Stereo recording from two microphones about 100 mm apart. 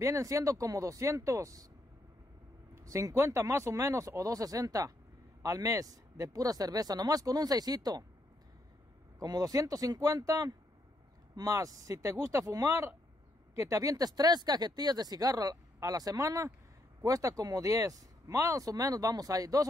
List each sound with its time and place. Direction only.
0.0 s speech: 35° right (ahead or behind)
2.7 s speech: 30° right (ahead or behind)
9.2 s speech: 40° right (ahead or behind)